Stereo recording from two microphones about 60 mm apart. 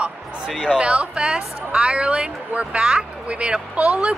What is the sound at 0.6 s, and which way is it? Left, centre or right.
A woman's voice, centre.